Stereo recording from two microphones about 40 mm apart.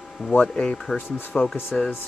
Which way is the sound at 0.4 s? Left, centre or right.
Left.